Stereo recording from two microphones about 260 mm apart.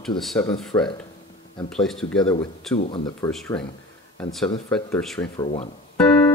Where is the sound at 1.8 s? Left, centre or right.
Centre.